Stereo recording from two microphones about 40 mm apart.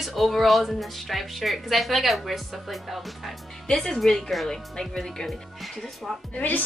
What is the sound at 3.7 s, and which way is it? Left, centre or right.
Speech, centre.